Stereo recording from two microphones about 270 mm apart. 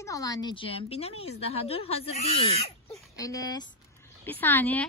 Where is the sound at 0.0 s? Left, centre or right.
Centre.